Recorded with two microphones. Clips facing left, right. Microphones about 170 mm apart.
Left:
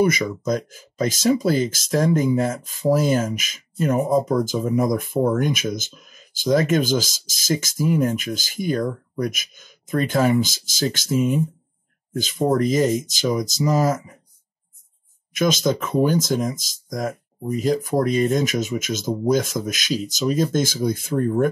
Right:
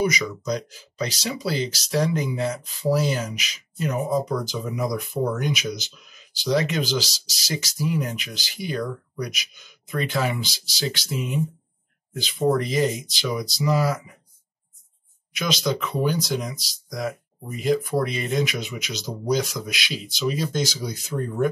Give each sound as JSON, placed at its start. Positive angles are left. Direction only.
{"t": 0.0, "sound": "speech", "side_deg": 50}
{"t": 15.3, "sound": "speech", "side_deg": 45}